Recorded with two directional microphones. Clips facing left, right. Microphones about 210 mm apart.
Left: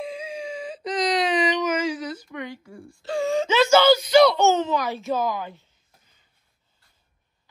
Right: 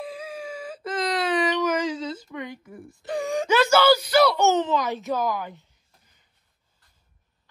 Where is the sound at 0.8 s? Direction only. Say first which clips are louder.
Left 2 dB; 15° left (ahead or behind).